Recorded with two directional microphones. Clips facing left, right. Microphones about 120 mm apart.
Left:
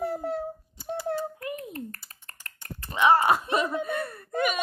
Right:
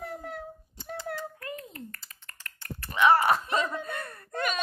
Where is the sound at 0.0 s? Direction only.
30° left (ahead or behind).